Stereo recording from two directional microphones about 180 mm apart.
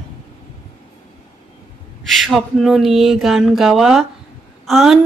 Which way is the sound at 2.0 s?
Centre (ahead or behind).